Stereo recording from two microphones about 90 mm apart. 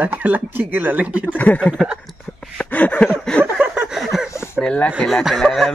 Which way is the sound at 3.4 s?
20° right (ahead or behind).